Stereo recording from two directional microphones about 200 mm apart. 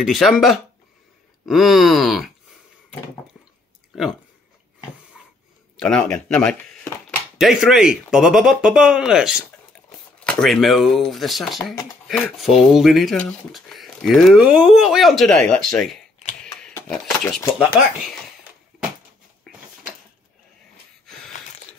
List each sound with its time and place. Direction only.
0.0 s speech: centre (ahead or behind)
5.8 s speech: 5° left (ahead or behind)
16.4 s a sound: 15° left (ahead or behind)